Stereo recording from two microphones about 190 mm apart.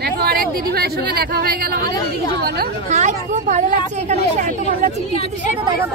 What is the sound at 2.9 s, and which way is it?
Speech, 40° right (ahead or behind).